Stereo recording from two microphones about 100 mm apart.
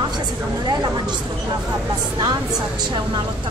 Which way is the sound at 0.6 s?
45° right (ahead or behind).